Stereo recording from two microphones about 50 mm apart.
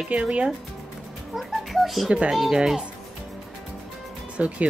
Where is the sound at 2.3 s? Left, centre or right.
Centre.